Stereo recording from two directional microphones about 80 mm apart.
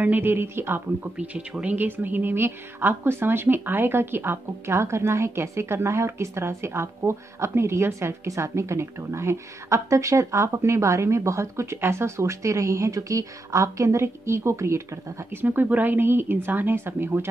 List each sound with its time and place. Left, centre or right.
0.0 s speech: right
1.1 s speech: centre; by 14.8 s right
15.4 s speech: right